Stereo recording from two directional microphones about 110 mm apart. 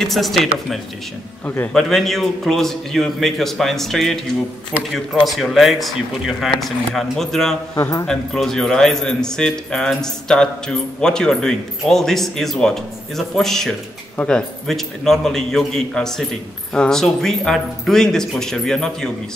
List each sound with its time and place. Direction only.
0.0 s speech: centre (ahead or behind)
1.4 s a man's voice: 20° left (ahead or behind)
1.7 s speech: 5° left (ahead or behind)
7.7 s a man's voice: 30° left (ahead or behind)
8.1 s speech: 5° left (ahead or behind)